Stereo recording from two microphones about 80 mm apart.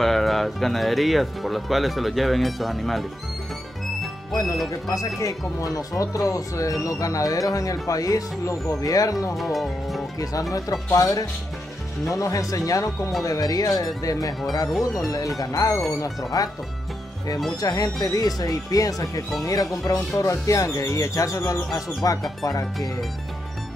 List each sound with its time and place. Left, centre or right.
0.0 s speech: centre
4.3 s speech: left
9.3 s speech: centre
11.0 s speech: left
12.1 s speech: left
17.6 s speech: left